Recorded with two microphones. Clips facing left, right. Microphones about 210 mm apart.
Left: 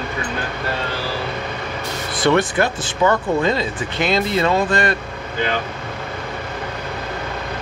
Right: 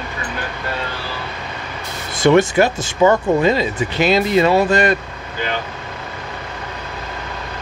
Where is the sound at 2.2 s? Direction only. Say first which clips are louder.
Right 4 dB; 15° right (ahead or behind).